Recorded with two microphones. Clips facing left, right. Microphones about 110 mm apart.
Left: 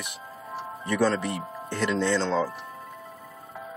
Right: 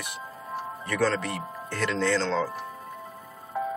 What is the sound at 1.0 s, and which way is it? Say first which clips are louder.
Speech: even; 10° left (ahead or behind).